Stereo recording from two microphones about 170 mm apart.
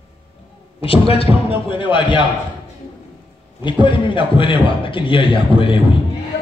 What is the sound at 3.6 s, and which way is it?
A man's voice, 30° left (ahead or behind).